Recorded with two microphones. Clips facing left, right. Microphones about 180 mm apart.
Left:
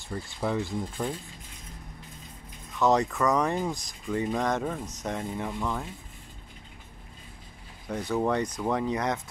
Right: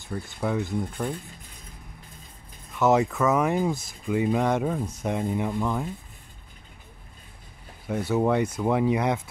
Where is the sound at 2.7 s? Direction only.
5° right (ahead or behind).